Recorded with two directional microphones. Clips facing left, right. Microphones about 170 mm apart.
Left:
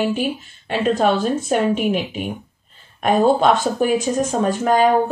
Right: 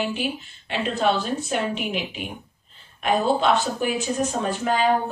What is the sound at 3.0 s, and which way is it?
A woman's voice, 45° left (ahead or behind).